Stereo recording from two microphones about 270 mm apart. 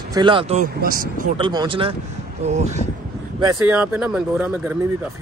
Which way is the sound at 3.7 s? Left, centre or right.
Centre.